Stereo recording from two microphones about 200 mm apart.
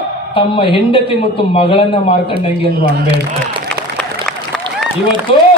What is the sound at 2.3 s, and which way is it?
Speech, 50° right (ahead or behind).